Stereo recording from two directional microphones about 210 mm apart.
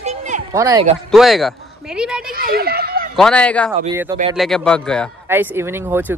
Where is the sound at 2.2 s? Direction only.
45° right (ahead or behind).